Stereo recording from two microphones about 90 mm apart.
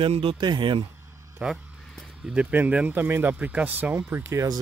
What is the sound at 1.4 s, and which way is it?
Speech, 15° right (ahead or behind).